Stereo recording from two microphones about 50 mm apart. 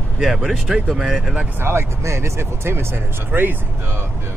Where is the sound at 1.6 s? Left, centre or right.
Right.